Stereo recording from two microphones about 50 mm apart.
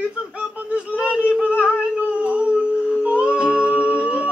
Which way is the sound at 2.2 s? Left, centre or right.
Right.